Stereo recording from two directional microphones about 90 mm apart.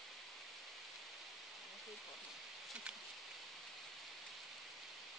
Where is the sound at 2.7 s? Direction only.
10° right (ahead or behind).